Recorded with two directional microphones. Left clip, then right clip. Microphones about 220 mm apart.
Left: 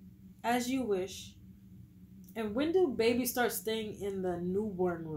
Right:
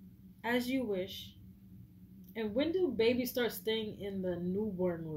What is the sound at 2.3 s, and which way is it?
Speech, centre (ahead or behind).